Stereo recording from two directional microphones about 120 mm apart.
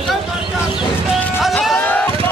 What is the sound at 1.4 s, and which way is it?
Music, centre (ahead or behind).